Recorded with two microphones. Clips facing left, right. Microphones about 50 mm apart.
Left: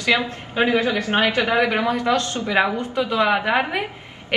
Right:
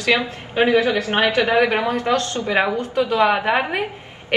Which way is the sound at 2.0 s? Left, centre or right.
Centre.